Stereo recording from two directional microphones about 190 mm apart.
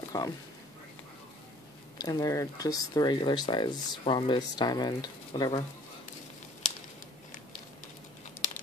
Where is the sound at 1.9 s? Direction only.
20° left (ahead or behind).